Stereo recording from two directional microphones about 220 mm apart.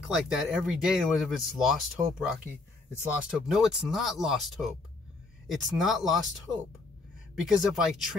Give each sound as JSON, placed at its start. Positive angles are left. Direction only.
{"t": 0.0, "sound": "speech", "side_deg": -5}
{"t": 3.3, "sound": "speech", "side_deg": 0}
{"t": 7.4, "sound": "speech", "side_deg": 0}